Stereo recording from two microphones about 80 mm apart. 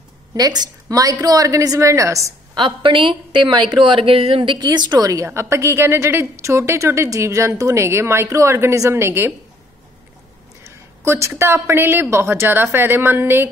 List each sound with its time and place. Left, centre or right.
0.3 s a woman's voice: right
2.5 s a woman's voice: right
5.2 s a woman's voice: right
10.6 s a woman's voice: right